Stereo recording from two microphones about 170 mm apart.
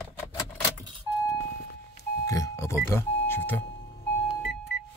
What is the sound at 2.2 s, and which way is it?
Speech, 20° left (ahead or behind).